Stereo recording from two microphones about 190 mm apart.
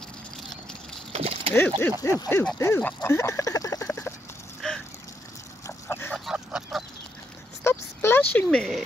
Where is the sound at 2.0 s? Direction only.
15° left (ahead or behind).